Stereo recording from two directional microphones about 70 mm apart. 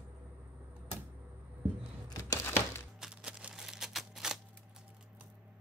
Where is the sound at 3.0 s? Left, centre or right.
Centre.